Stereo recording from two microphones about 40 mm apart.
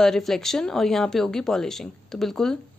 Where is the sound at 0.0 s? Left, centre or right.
Centre.